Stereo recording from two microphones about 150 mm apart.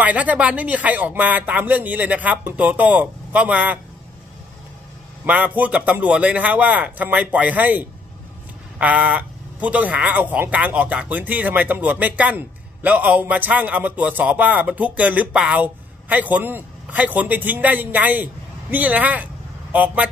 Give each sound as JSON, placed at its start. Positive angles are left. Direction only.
{"t": 0.0, "sound": "speech", "side_deg": -10}
{"t": 5.2, "sound": "speech", "side_deg": -10}